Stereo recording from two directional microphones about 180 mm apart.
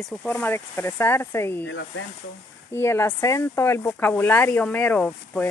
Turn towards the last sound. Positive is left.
turn(degrees=10)  # may be behind; listen again after turning